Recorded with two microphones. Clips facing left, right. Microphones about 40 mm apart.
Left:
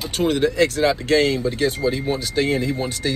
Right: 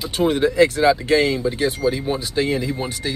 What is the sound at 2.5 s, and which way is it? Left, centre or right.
Speech, left.